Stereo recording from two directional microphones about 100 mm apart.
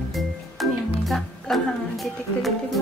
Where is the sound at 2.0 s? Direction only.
Centre (ahead or behind).